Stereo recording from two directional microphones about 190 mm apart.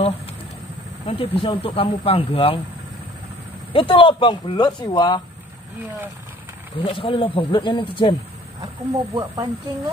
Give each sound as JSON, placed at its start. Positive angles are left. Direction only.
{"t": 1.0, "sound": "speech", "side_deg": 30}
{"t": 3.7, "sound": "speech", "side_deg": 25}
{"t": 6.8, "sound": "speech", "side_deg": 25}
{"t": 8.5, "sound": "speech", "side_deg": -20}